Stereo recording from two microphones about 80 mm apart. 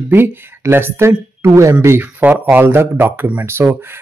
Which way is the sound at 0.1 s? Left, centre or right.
Right.